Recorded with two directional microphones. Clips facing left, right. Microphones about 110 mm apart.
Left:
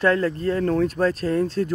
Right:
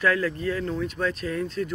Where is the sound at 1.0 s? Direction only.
35° left (ahead or behind).